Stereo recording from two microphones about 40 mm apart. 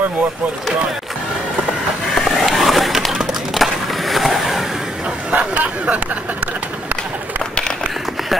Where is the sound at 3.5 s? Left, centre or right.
Centre.